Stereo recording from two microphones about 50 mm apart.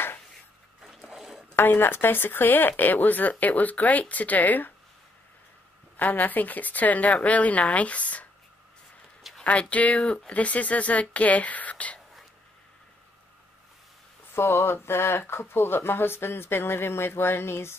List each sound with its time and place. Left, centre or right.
0.8 s a sound: centre
1.5 s speech: left
5.9 s speech: left
9.4 s speech: left
14.4 s speech: left